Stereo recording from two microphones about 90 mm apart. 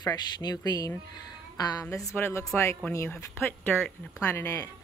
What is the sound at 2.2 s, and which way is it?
Speech, 25° left (ahead or behind).